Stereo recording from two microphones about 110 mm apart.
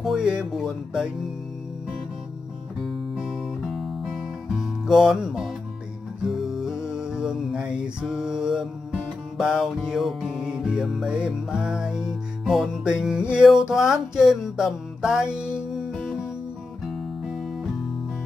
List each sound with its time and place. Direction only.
0.0 s music: 5° right (ahead or behind)
3.2 s music: centre (ahead or behind)